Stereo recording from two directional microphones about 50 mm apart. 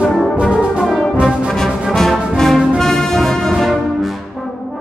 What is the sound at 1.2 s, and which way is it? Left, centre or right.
Music, centre.